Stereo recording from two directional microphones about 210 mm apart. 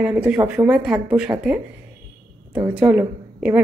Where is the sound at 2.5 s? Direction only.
20° right (ahead or behind).